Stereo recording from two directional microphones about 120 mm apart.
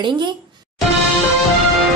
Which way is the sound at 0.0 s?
40° right (ahead or behind).